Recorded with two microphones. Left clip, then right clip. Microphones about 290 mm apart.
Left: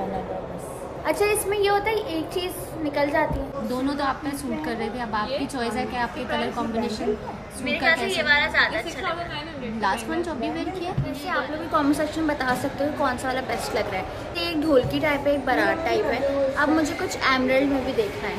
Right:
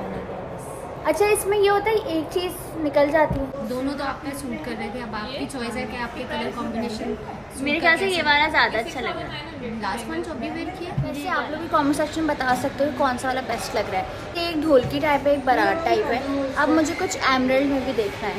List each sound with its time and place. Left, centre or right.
1.0 s a woman's voice: centre
7.6 s a woman's voice: centre
11.2 s a woman's voice: centre